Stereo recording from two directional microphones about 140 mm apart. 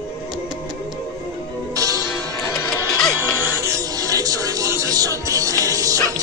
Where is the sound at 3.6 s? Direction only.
25° right (ahead or behind).